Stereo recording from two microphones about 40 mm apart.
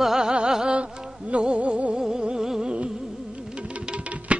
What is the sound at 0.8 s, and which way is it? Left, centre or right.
Music, right.